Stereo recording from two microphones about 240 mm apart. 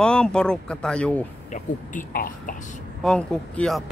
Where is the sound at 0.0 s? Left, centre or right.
Centre.